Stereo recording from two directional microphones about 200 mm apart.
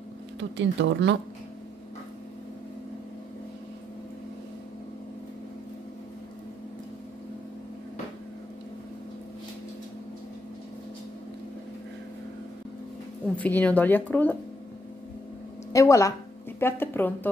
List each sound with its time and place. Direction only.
0.4 s speech: 65° right (ahead or behind)
13.4 s speech: 10° left (ahead or behind)
15.7 s speech: 15° left (ahead or behind)